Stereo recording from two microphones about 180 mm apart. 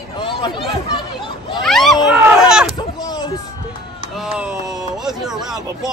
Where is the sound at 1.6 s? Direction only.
Centre (ahead or behind).